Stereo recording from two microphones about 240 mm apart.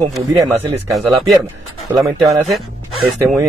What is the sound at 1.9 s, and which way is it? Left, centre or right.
Speech, centre.